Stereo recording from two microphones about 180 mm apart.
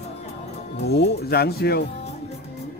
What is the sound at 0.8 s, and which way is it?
Speech, 65° left (ahead or behind).